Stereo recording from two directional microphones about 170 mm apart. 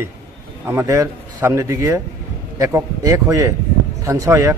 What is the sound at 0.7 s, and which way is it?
A man's voice, 15° right (ahead or behind).